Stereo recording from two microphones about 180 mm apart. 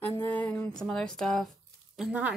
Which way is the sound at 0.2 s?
10° left (ahead or behind).